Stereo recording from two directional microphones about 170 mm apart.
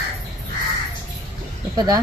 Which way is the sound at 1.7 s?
25° right (ahead or behind).